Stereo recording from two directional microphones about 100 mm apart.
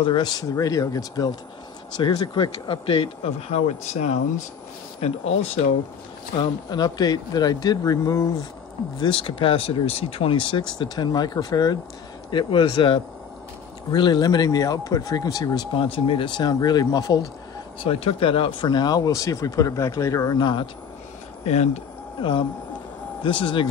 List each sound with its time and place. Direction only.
0.0 s speech: 50° left (ahead or behind); by 5.6 s 90° left
6.3 s speech: 50° left (ahead or behind)
9.0 s speech: 60° left (ahead or behind); by 15.6 s 35° left (ahead or behind)
15.7 s speech: 65° left (ahead or behind); by 17.3 s 35° left (ahead or behind)
17.7 s speech: 65° left (ahead or behind); by 20.6 s 50° left (ahead or behind)
23.2 s speech: 55° left (ahead or behind)